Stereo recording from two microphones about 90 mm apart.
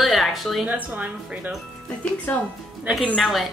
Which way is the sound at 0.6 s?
20° right (ahead or behind).